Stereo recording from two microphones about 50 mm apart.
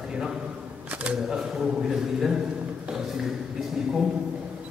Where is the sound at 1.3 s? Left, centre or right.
Centre.